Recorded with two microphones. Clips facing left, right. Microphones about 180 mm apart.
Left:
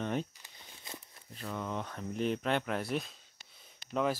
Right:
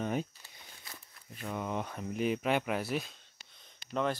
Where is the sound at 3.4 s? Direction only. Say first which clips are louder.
Left 1 dB; 5° left (ahead or behind).